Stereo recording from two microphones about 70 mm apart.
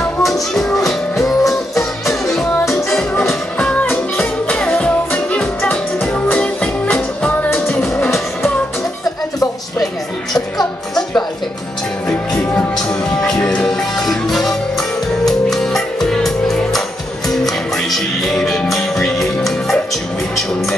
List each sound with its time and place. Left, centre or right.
0.2 s music: centre
4.6 s music: centre
6.2 s music: left
7.5 s music: centre
13.2 s music: centre